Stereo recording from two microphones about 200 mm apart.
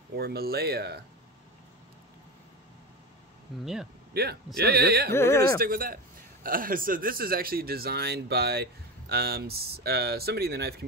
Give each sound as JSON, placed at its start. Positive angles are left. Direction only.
{"t": 0.2, "sound": "speech", "side_deg": -50}
{"t": 3.6, "sound": "speech", "side_deg": 0}
{"t": 4.1, "sound": "a man's voice", "side_deg": -55}
{"t": 5.1, "sound": "speech", "side_deg": 10}
{"t": 5.6, "sound": "speech", "side_deg": -45}